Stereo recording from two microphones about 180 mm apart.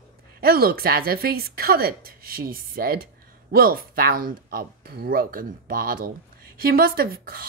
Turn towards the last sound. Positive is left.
turn(degrees=-55)  # may be behind; listen again after turning